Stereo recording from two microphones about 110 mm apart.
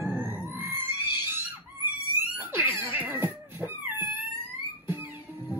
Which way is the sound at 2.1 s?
20° right (ahead or behind).